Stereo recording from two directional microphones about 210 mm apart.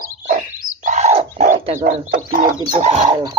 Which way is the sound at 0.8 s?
35° right (ahead or behind).